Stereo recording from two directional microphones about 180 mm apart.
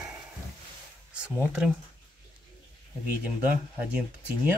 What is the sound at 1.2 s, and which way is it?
Speech, 5° right (ahead or behind).